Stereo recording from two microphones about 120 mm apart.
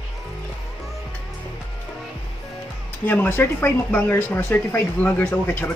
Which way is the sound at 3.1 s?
15° left (ahead or behind).